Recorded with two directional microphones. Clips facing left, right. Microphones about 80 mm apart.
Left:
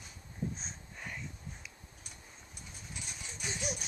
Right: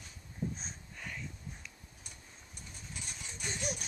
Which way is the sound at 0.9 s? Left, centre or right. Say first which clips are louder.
Left 1 dB; centre.